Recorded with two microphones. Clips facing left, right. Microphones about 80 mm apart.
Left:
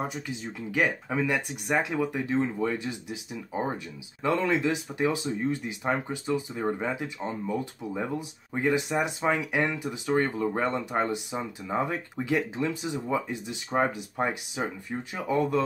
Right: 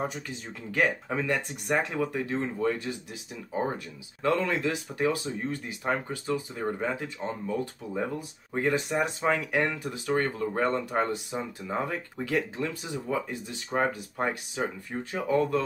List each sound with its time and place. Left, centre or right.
0.7 s speech: centre
8.5 s speech: centre